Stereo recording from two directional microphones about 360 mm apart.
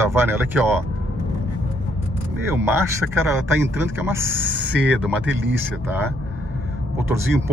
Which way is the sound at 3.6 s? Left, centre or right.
Centre.